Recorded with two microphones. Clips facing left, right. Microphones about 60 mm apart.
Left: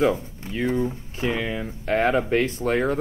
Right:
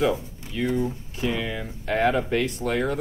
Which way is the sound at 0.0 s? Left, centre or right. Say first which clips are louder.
Left 2 dB; left.